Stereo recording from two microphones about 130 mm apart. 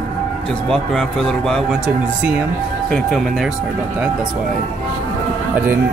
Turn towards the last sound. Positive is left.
turn(degrees=-15)  # may be behind; listen again after turning